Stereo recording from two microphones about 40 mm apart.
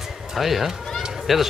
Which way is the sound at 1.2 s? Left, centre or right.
Centre.